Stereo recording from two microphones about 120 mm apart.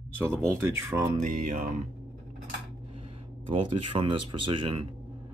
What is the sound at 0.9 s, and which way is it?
Speech, 30° right (ahead or behind).